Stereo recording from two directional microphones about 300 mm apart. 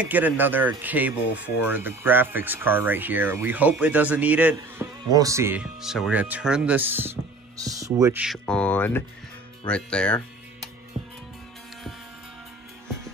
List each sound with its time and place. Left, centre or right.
0.0 s speech: centre